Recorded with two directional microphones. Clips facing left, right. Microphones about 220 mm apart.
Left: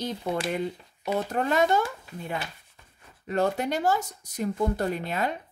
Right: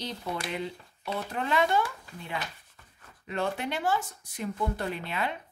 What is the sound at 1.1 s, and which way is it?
Speech, 45° left (ahead or behind).